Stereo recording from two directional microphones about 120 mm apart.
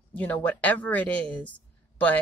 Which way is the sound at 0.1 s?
15° left (ahead or behind).